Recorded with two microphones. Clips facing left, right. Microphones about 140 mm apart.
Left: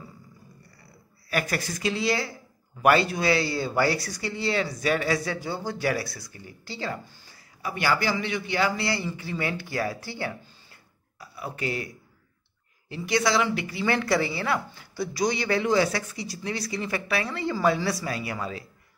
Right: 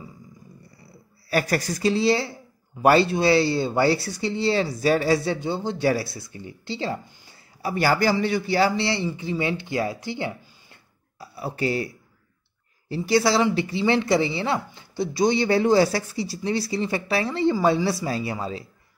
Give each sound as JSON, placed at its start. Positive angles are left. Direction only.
{"t": 1.3, "sound": "a woman's voice", "side_deg": -35}
{"t": 7.6, "sound": "a woman's voice", "side_deg": -35}
{"t": 10.7, "sound": "a sound", "side_deg": -30}
{"t": 12.8, "sound": "a woman's voice", "side_deg": -35}